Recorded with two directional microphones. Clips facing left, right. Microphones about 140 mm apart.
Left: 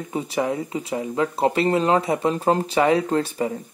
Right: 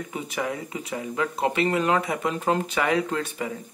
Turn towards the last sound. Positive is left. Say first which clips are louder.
# left 5 dB
turn(degrees=30)  # may be behind; listen again after turning